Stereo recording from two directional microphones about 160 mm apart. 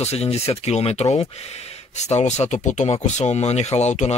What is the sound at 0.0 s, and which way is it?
Speech, 40° left (ahead or behind).